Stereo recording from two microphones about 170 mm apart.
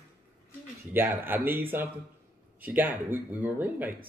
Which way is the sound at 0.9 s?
10° right (ahead or behind).